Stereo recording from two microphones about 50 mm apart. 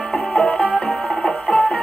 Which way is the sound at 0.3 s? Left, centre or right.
Centre.